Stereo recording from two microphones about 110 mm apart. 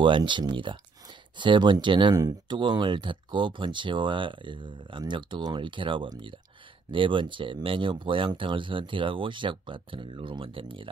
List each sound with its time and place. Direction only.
0.0 s speech: 45° right (ahead or behind)